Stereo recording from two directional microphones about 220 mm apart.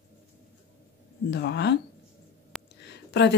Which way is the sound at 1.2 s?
50° left (ahead or behind).